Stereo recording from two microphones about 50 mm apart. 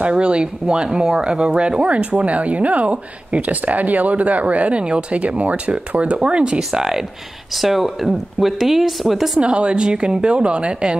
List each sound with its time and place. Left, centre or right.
0.0 s speech: right; by 9.4 s centre
9.4 s speech: right